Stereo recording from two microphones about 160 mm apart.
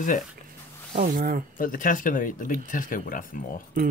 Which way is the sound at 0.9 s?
65° right (ahead or behind).